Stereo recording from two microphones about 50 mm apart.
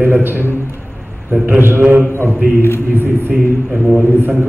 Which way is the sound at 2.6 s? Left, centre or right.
Left.